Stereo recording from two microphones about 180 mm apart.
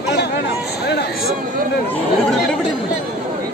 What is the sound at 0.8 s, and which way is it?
Speech, 65° left (ahead or behind).